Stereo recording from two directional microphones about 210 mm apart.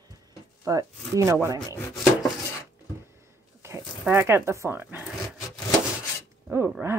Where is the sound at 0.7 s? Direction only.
15° right (ahead or behind).